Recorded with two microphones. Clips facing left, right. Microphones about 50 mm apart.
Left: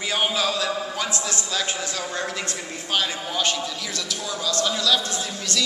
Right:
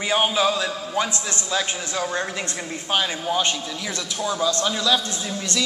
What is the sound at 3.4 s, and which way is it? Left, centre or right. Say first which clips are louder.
A man's voice: even; right.